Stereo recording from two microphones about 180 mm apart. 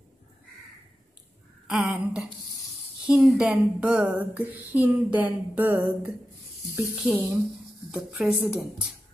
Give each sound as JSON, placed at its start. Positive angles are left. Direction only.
{"t": 1.7, "sound": "speech", "side_deg": -5}